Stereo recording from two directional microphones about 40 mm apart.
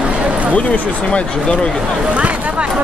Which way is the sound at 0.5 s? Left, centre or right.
Left.